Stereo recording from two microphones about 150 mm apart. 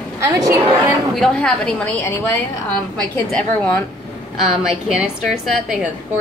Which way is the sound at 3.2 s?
5° left (ahead or behind).